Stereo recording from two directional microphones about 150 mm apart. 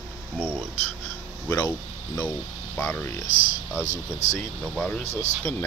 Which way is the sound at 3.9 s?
50° left (ahead or behind).